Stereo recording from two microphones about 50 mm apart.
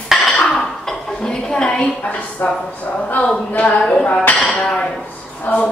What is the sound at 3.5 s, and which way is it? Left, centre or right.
A woman's voice, left.